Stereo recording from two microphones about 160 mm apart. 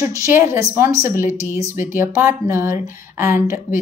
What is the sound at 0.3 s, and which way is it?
Speech, 15° right (ahead or behind).